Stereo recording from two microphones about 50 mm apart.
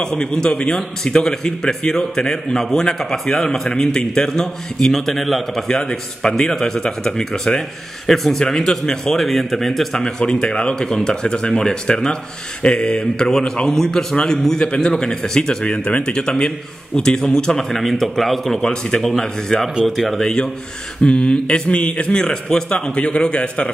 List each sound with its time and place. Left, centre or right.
0.0 s a man's voice: centre
9.9 s a man's voice: centre
15.6 s a man's voice: left
17.6 s a man's voice: centre
18.6 s a man's voice: centre
21.0 s a man's voice: left